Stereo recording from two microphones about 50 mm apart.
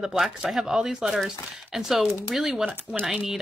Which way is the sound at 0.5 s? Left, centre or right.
Centre.